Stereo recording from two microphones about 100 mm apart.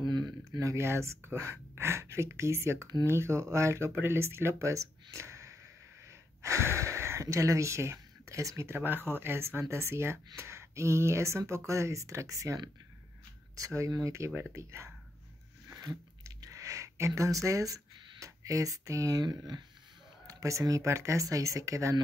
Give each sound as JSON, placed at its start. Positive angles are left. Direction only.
{"t": 0.0, "sound": "speech", "side_deg": -45}
{"t": 15.7, "sound": "a sound", "side_deg": -35}
{"t": 20.2, "sound": "speech", "side_deg": -30}